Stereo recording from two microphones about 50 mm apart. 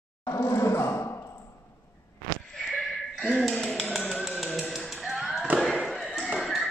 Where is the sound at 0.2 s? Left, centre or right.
Left.